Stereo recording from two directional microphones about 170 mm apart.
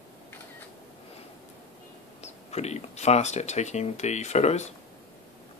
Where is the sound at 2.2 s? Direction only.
40° left (ahead or behind).